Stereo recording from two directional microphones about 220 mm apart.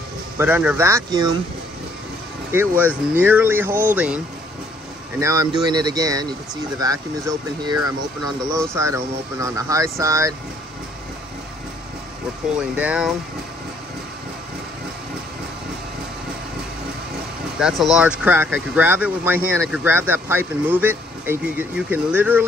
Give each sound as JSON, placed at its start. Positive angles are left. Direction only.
{"t": 0.4, "sound": "speech", "side_deg": -5}
{"t": 2.5, "sound": "speech", "side_deg": -10}
{"t": 5.2, "sound": "speech", "side_deg": -15}
{"t": 12.5, "sound": "speech", "side_deg": -5}
{"t": 17.6, "sound": "speech", "side_deg": 0}